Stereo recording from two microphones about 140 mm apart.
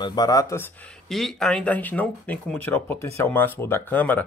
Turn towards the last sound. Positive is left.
turn(degrees=15)  # may be behind; listen again after turning